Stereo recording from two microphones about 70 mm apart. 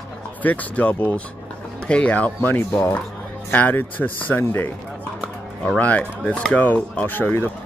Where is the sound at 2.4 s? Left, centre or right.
Left.